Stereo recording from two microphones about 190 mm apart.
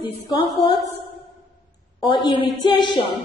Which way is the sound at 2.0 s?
20° left (ahead or behind).